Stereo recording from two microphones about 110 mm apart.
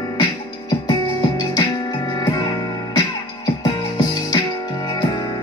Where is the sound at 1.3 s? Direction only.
35° left (ahead or behind).